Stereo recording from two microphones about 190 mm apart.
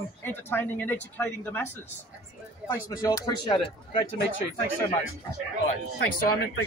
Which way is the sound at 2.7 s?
20° left (ahead or behind).